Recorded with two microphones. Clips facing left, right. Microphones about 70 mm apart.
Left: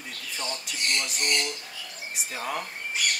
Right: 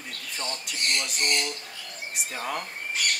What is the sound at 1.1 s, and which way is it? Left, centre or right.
Squawk, right.